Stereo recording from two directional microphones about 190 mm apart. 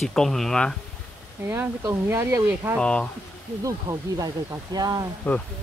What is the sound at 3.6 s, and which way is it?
Speech, 20° right (ahead or behind).